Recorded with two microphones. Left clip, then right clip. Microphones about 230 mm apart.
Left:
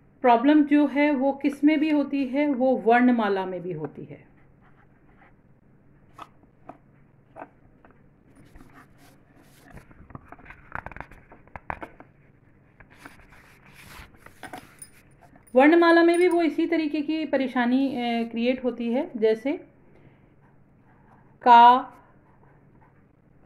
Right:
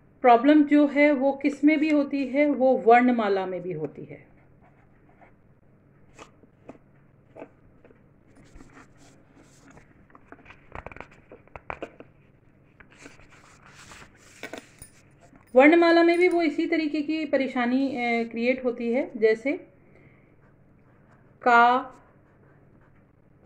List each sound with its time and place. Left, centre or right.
0.2 s speech: centre
15.5 s speech: centre
21.4 s speech: centre